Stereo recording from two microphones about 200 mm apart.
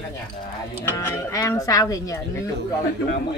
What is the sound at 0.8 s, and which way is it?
Speech, 15° left (ahead or behind).